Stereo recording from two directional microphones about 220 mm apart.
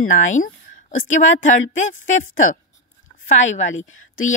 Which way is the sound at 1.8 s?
35° left (ahead or behind).